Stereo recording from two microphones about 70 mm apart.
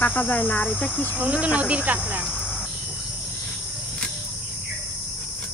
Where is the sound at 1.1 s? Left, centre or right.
Centre.